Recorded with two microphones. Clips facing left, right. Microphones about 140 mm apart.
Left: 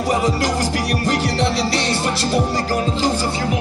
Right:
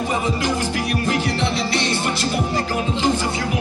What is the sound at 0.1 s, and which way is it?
Music, 35° left (ahead or behind).